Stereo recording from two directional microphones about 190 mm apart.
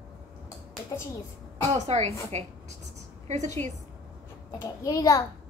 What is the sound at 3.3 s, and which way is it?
Speech, 35° right (ahead or behind).